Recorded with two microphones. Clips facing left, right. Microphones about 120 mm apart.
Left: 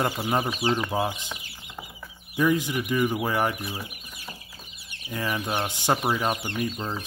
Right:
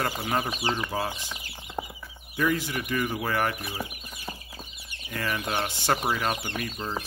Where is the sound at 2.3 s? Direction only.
15° left (ahead or behind).